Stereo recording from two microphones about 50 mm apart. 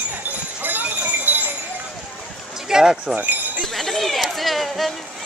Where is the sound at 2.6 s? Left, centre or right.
Centre.